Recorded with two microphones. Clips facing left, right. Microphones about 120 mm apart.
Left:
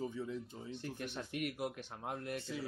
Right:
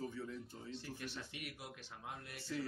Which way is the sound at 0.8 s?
55° left (ahead or behind).